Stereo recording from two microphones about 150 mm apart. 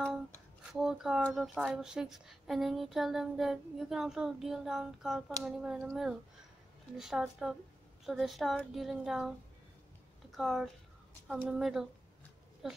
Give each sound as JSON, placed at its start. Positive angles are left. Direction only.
{"t": 0.7, "sound": "a woman's voice", "side_deg": -5}
{"t": 10.3, "sound": "a woman's voice", "side_deg": 0}